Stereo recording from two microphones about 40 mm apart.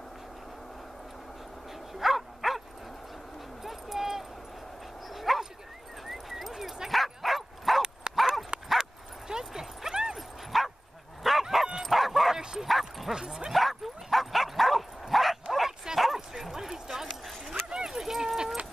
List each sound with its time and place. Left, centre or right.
2.0 s dog: centre
3.6 s a sound: centre
5.1 s dog: centre
8.1 s dog: right
9.3 s dog: centre
10.1 s dog: centre
11.5 s bow-wow: centre
12.4 s bow-wow: centre
12.6 s bow-wow: centre
13.1 s bow-wow: centre
13.5 s bow-wow: centre
17.5 s dog: centre